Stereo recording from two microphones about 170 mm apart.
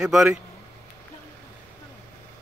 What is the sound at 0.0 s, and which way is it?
Speech, 5° right (ahead or behind).